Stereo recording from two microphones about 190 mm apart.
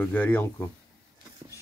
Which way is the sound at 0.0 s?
10° left (ahead or behind).